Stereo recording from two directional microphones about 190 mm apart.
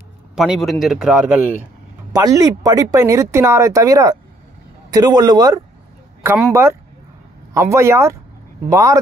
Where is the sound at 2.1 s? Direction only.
15° right (ahead or behind).